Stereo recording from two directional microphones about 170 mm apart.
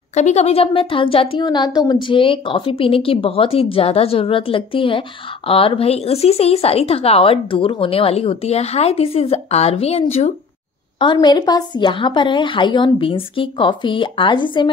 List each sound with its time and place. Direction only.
0.1 s a woman's voice: 40° left (ahead or behind)